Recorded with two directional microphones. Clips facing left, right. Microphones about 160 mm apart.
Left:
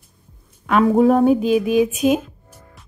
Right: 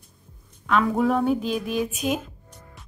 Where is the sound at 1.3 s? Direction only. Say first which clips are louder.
Left 9 dB; 5° left (ahead or behind).